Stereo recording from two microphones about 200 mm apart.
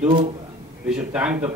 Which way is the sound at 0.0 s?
30° right (ahead or behind).